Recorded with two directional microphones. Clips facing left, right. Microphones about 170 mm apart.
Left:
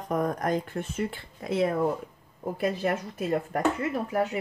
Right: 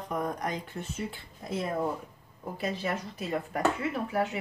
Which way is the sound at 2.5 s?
55° left (ahead or behind).